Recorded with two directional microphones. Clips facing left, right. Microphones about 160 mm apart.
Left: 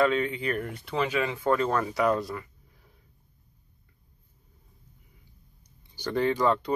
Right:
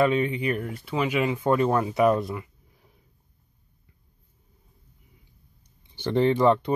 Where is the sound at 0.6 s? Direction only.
Centre (ahead or behind).